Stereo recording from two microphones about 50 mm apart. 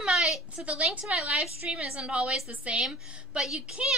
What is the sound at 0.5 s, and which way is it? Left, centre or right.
A woman's voice, right.